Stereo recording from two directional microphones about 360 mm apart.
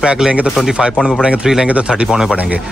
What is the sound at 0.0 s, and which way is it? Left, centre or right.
Speech, centre.